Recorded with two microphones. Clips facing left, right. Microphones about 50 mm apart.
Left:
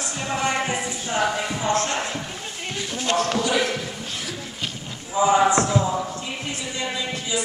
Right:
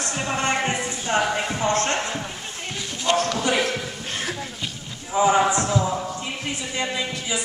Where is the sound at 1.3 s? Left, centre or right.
Right.